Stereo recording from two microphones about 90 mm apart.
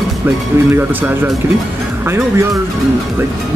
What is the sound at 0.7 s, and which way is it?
Speech, 20° right (ahead or behind).